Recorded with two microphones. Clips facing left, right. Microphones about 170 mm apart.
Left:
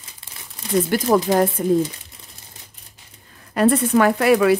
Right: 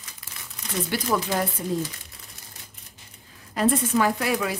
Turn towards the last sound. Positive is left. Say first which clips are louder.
# left 9 dB
turn(degrees=65)  # may be behind; listen again after turning